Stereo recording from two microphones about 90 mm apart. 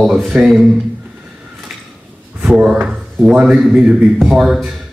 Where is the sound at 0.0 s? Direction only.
5° right (ahead or behind).